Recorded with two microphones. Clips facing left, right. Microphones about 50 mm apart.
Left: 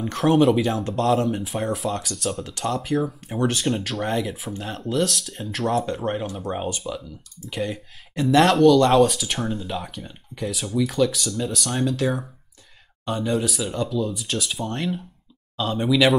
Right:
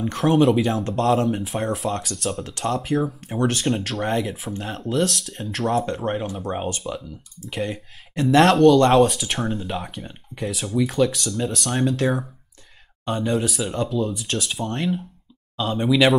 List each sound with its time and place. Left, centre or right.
0.0 s speech: centre
8.7 s speech: centre
9.0 s speech: centre
10.0 s speech: centre
10.5 s speech: centre